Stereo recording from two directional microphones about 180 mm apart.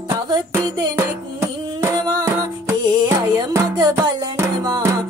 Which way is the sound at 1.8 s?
15° right (ahead or behind).